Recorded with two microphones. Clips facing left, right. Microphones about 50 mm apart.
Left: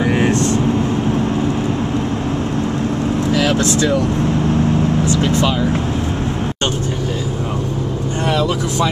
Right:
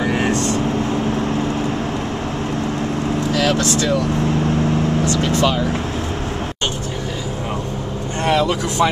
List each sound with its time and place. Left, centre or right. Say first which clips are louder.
0.0 s vehicle: left 3 dB; centre
3.3 s speech: left 1 dB; left
5.0 s vehicle: left 1 dB; left
8.3 s speech: right 1 dB; centre